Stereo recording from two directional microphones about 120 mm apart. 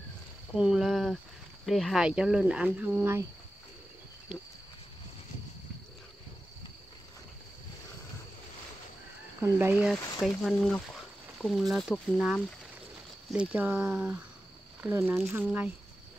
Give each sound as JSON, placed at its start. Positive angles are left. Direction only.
{"t": 0.6, "sound": "speech", "side_deg": -5}
{"t": 9.4, "sound": "speech", "side_deg": -20}
{"t": 9.9, "sound": "speech", "side_deg": 30}
{"t": 10.2, "sound": "speech", "side_deg": 0}